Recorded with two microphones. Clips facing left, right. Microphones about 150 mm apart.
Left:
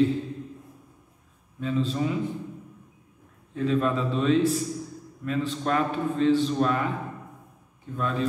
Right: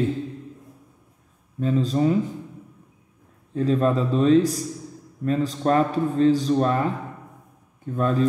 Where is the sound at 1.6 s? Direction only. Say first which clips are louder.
Right 5 dB; 40° right (ahead or behind).